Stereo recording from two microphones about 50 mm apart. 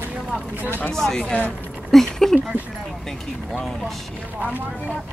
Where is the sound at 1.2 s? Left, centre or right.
Left.